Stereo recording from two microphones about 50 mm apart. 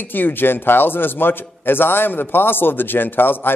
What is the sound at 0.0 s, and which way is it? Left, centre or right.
A man's voice, left.